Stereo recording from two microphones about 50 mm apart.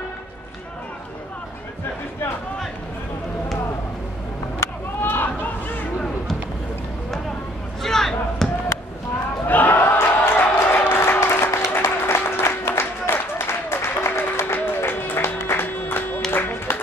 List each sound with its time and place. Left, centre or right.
5.0 s a sound: left
7.8 s basketball bounce: centre
9.5 s a sound: left
9.8 s music: left
11.7 s applause: left
14.5 s music: left
15.6 s music: left